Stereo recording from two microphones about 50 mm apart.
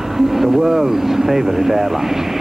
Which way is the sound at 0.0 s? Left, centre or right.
Centre.